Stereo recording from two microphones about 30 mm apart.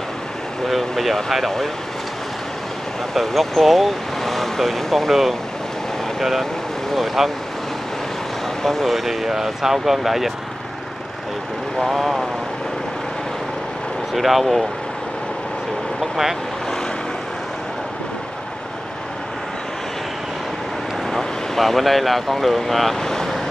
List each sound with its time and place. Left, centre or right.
0.7 s speech: centre
3.2 s speech: centre
8.6 s speech: centre
8.9 s speech: centre
11.9 s speech: centre
14.1 s speech: centre
16.0 s speech: centre
21.1 s speech: centre
22.9 s vehicle: centre